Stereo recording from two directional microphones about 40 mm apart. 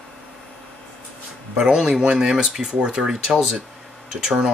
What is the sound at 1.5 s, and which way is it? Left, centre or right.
Speech, centre.